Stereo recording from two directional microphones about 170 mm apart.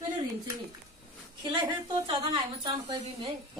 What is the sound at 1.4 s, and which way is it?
A woman's voice, 30° right (ahead or behind).